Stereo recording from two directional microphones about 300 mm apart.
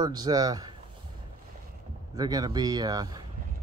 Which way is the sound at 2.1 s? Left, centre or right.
Centre.